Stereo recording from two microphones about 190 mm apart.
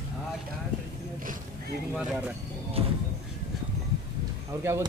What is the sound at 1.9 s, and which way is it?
Speech, centre (ahead or behind).